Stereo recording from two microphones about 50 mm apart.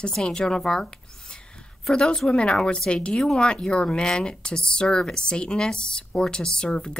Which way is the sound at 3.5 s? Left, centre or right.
Centre.